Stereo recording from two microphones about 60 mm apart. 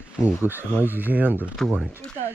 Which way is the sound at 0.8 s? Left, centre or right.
Right.